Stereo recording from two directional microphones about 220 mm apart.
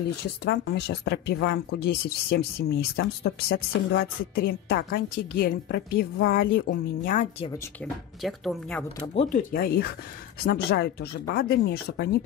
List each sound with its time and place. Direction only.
0.2 s speech: 50° left (ahead or behind)
8.2 s speech: centre (ahead or behind)
9.1 s speech: 30° left (ahead or behind)